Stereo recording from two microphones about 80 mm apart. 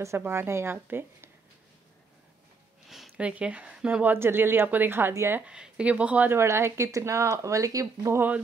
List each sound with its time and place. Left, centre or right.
0.2 s speech: right
3.2 s speech: centre; by 5.4 s right
5.5 s speech: centre
6.3 s speech: right